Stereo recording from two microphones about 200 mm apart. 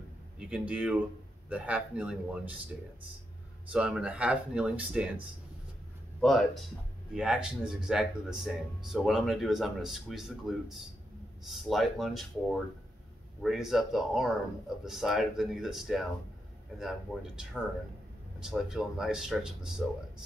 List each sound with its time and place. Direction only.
0.4 s speech: 5° right (ahead or behind)
3.7 s speech: 5° right (ahead or behind)
6.2 s speech: centre (ahead or behind)
13.4 s speech: centre (ahead or behind)